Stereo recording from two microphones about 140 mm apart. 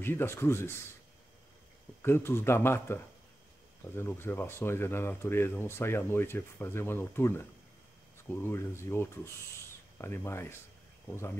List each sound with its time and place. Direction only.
0.0 s speech: 15° left (ahead or behind)
2.0 s speech: 15° left (ahead or behind)